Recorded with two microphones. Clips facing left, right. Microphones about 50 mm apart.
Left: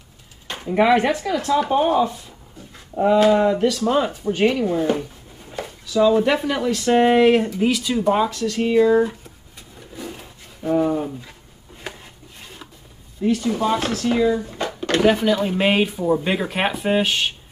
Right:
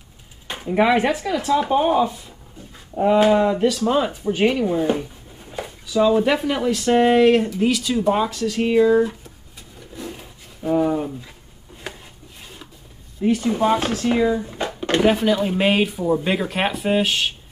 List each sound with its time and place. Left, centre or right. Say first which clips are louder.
0.7 s speech: left 1 dB; centre
3.4 s speech: even; centre
6.9 s speech: even; centre
8.5 s speech: right 1 dB; centre
8.8 s speech: even; centre
9.9 s roaring cats: even; centre
11.8 s chopping: even; centre
13.2 s speech: right 1 dB; right
14.6 s a sound: even; centre
15.1 s speech: even; centre